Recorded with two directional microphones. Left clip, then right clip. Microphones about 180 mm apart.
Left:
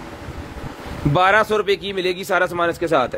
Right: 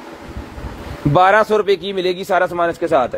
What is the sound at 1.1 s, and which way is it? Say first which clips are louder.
A man's voice: right 4 dB; 10° right (ahead or behind).